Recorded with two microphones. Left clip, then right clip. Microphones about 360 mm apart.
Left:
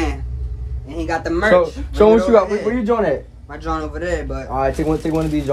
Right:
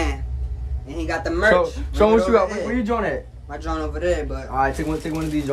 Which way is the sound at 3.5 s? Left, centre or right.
Centre.